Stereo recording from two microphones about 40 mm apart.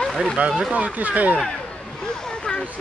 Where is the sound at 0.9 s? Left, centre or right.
Right.